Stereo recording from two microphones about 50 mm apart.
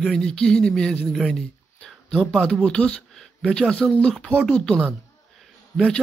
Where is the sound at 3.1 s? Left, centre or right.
Centre.